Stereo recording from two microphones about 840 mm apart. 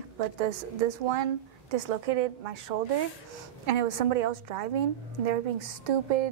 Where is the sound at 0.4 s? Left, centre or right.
Right.